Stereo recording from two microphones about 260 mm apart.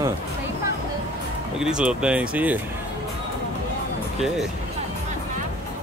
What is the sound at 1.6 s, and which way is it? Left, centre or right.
Speech, centre.